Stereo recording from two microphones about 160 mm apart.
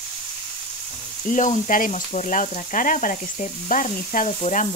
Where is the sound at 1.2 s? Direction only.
55° left (ahead or behind).